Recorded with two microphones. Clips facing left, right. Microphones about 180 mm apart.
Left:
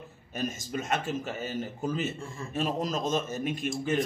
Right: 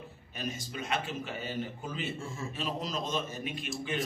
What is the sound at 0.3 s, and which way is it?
A man's voice, 45° left (ahead or behind).